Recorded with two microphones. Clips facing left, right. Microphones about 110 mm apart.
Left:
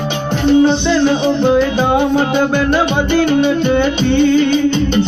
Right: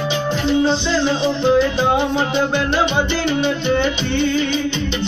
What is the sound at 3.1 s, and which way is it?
Music, 50° left (ahead or behind).